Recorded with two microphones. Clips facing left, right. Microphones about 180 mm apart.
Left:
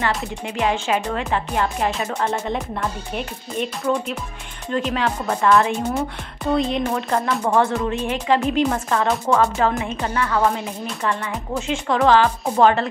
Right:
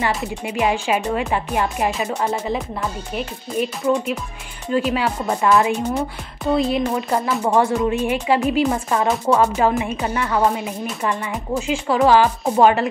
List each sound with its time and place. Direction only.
0.1 s a woman's voice: 10° right (ahead or behind)